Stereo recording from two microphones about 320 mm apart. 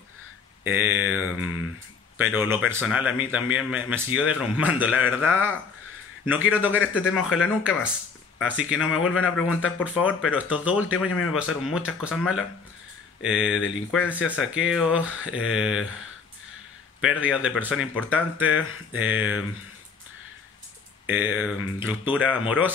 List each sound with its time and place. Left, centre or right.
0.7 s a man's voice: centre
8.8 s speech: left
9.2 s a man's voice: centre
12.0 s a man's voice: centre
17.0 s a man's voice: centre
21.1 s a man's voice: centre